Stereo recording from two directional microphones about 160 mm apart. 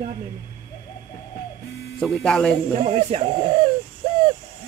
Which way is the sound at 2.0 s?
5° left (ahead or behind).